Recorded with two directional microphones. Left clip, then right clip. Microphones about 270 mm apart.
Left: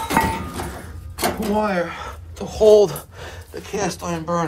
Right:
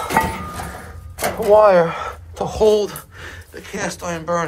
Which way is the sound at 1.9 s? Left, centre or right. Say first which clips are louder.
Right 6 dB; centre.